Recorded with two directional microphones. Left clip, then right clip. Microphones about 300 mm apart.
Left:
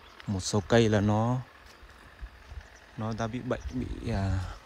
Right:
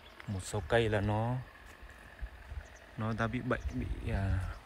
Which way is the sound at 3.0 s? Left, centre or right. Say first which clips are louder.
Left 2 dB; centre.